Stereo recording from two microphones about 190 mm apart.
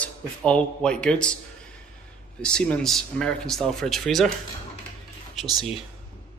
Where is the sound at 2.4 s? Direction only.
5° left (ahead or behind).